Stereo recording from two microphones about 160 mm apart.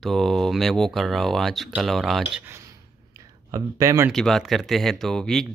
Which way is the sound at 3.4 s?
20° right (ahead or behind).